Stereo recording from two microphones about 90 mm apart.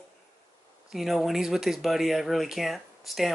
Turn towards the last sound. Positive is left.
turn(degrees=0)  # may be behind; listen again after turning